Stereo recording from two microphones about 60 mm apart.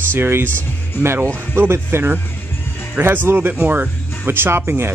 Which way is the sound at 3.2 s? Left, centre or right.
Right.